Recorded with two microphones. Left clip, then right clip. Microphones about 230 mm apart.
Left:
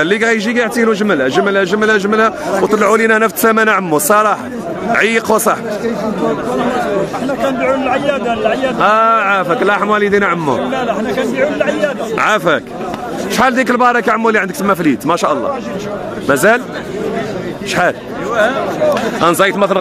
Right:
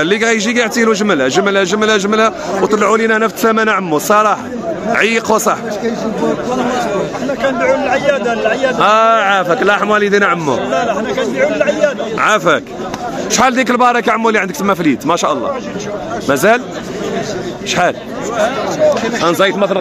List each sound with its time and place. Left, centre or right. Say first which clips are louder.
0.0 s a man's voice: even; centre
7.6 s a man's voice: right 2 dB; centre
8.7 s a man's voice: right 1 dB; centre
12.2 s a man's voice: right 1 dB; centre
19.1 s speech: left 1 dB; centre